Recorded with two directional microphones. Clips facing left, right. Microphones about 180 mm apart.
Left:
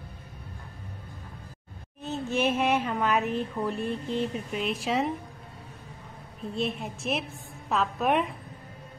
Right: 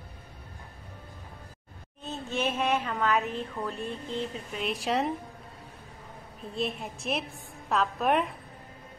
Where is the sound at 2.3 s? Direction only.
10° left (ahead or behind).